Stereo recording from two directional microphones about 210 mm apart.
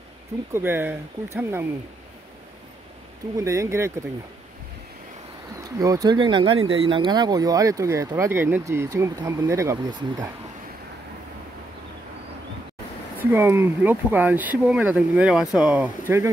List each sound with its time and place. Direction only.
0.5 s speech: 10° right (ahead or behind)
3.3 s speech: 15° right (ahead or behind)
5.6 s speech: 15° right (ahead or behind)
13.2 s speech: 10° right (ahead or behind)